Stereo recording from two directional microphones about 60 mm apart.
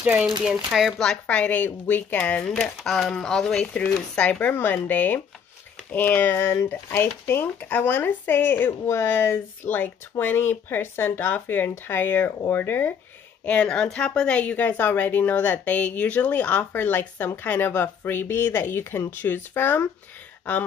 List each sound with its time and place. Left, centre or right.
0.0 s speech: right
0.4 s speech: centre
1.2 s speech: left
2.6 s speech: centre
3.6 s speech: left
6.7 s speech: left
13.5 s speech: centre; by 19.9 s left